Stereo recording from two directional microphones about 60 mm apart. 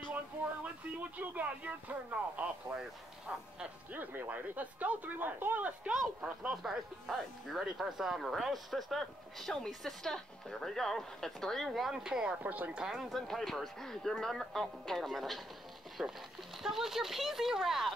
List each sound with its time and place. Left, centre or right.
0.9 s speech: right
3.9 s speech: right
6.5 s speech: centre
12.4 s speech: right
12.7 s speech: centre
13.1 s speech: centre
16.0 s speech: centre